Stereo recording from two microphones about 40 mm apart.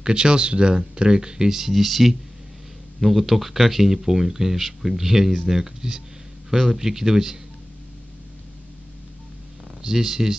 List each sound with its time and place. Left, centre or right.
0.0 s speech: right
1.7 s speech: centre
9.8 s speech: centre